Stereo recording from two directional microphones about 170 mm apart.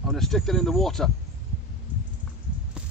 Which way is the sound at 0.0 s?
Centre (ahead or behind).